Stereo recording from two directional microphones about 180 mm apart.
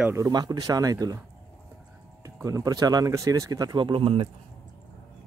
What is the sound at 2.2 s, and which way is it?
Speech, 20° right (ahead or behind).